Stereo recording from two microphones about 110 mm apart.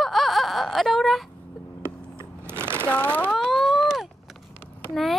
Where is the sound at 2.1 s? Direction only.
20° right (ahead or behind).